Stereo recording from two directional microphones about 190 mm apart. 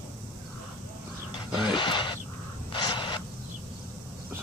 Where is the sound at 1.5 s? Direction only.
25° left (ahead or behind).